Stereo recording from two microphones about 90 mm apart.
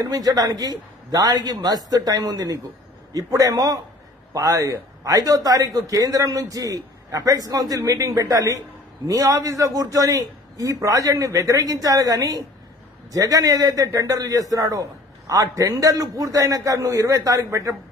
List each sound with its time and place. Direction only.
0.1 s a man's voice: 45° right (ahead or behind)